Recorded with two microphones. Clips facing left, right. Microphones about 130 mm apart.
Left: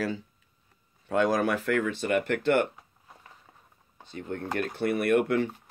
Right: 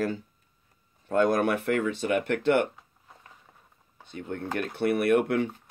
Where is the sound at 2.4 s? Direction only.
55° right (ahead or behind).